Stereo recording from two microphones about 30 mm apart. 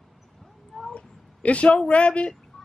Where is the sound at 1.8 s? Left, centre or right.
Left.